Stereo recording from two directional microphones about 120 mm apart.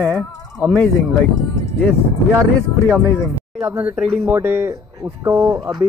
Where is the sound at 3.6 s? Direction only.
15° right (ahead or behind).